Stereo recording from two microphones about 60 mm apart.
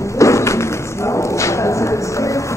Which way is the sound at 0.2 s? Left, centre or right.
Left.